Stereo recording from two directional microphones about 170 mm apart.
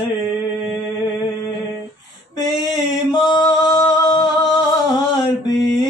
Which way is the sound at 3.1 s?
25° left (ahead or behind).